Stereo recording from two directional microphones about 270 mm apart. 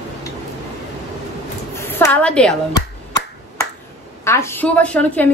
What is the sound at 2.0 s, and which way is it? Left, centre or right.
Speech, centre.